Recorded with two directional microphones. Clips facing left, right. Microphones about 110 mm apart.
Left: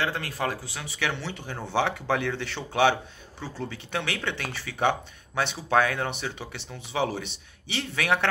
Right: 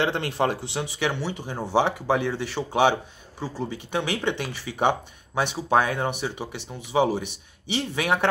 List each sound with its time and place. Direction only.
0.0 s speech: 25° right (ahead or behind)